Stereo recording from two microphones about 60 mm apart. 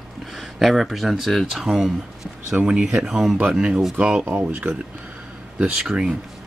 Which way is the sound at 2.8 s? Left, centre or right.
Centre.